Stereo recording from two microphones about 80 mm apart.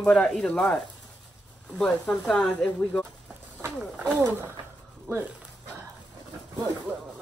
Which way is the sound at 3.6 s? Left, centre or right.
Right.